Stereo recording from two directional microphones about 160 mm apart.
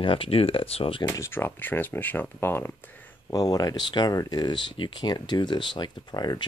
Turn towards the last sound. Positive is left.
turn(degrees=25)  # may be behind; listen again after turning